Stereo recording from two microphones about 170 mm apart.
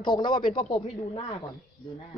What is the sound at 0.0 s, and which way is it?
Speech, 25° left (ahead or behind).